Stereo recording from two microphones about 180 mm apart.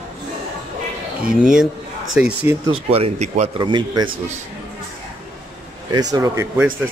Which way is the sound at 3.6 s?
25° right (ahead or behind).